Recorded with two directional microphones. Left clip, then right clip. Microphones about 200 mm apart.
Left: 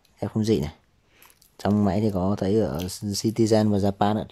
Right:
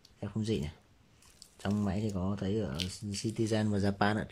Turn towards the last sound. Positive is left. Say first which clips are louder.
# left 8 dB
turn(degrees=15)  # may be behind; listen again after turning